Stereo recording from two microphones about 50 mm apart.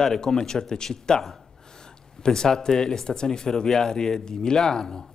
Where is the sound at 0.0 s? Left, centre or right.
Centre.